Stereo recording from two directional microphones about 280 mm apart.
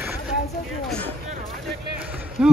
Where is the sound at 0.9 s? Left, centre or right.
Centre.